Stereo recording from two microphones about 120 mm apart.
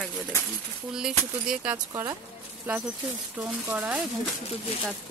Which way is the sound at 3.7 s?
10° right (ahead or behind).